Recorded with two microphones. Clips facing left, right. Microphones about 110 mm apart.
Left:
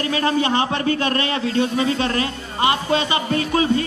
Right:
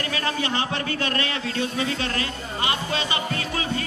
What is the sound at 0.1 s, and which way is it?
A man's voice, 30° left (ahead or behind).